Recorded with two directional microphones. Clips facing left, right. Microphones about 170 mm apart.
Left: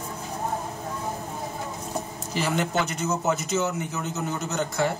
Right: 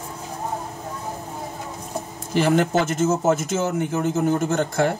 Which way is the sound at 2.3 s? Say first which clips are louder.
Right 7 dB; 55° right (ahead or behind).